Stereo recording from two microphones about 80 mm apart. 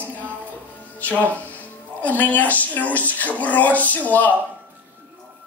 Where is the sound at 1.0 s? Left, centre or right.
Centre.